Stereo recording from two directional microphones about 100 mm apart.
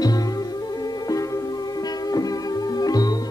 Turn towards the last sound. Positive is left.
turn(degrees=40)  # may be behind; listen again after turning